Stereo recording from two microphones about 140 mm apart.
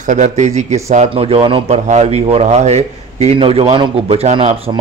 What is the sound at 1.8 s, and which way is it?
A man's voice, 50° right (ahead or behind).